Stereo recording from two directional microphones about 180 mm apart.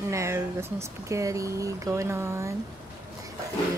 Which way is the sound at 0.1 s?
15° right (ahead or behind).